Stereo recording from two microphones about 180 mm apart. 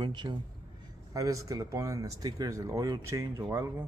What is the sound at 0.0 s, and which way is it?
A man's voice, 25° right (ahead or behind).